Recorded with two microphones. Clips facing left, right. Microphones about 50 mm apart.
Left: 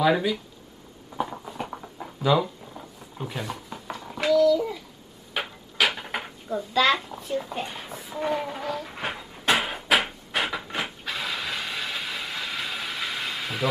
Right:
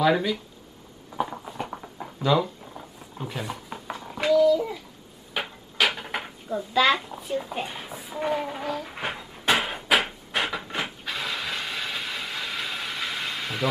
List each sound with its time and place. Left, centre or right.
0.0 s speech: centre
1.1 s a sound: centre
3.7 s babbling: centre
5.3 s drawer open or close: centre